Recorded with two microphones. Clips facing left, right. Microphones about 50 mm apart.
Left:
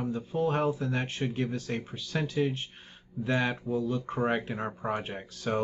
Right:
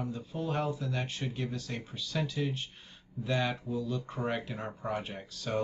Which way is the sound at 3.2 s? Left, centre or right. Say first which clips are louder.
Left 3 dB; left.